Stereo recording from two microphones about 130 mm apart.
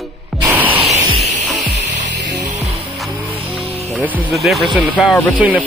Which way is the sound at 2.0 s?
65° right (ahead or behind).